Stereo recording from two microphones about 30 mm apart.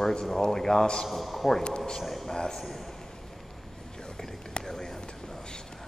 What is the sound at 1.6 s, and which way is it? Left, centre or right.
Speech, left.